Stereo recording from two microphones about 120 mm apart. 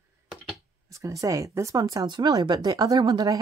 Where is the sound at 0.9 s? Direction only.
30° right (ahead or behind).